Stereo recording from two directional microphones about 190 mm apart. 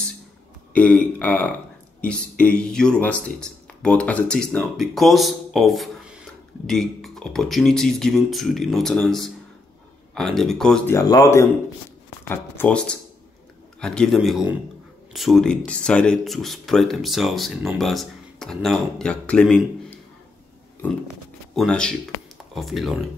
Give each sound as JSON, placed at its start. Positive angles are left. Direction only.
{"t": 0.7, "sound": "speech", "side_deg": 5}
{"t": 11.0, "sound": "speech", "side_deg": 20}
{"t": 21.5, "sound": "speech", "side_deg": 5}